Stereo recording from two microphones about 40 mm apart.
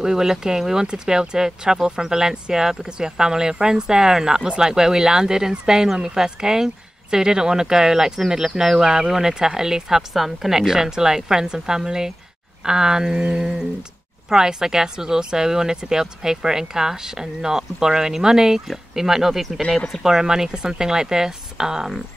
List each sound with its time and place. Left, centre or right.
0.0 s speech: centre